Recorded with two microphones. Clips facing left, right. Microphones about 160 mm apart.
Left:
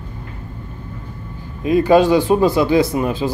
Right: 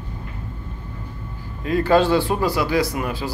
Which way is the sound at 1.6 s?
15° left (ahead or behind).